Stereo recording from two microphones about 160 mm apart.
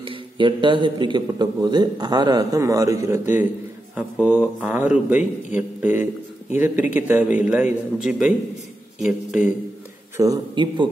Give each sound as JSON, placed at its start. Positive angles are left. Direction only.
{"t": 0.0, "sound": "a man's voice", "side_deg": -30}
{"t": 10.1, "sound": "a man's voice", "side_deg": -20}